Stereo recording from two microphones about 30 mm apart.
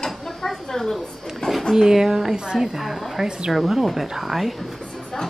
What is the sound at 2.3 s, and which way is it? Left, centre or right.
Speech, right.